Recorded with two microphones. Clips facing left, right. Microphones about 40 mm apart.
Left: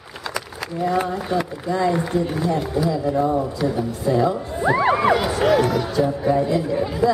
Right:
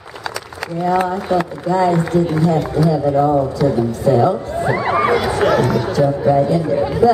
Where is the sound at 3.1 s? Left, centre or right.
Right.